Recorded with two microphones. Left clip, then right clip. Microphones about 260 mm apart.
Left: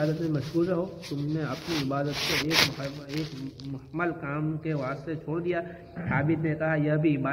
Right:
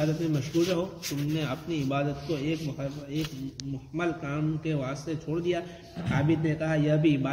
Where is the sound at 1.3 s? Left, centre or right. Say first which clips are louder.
Left 2 dB; right.